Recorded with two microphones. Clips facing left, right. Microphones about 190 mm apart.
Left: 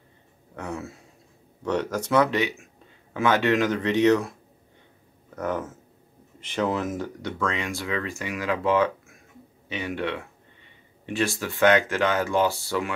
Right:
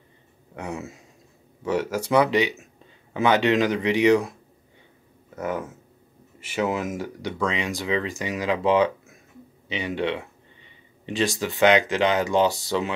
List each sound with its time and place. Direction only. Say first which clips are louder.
0.6 s speech: right 1 dB; 15° right (ahead or behind)
5.3 s speech: even; 10° right (ahead or behind)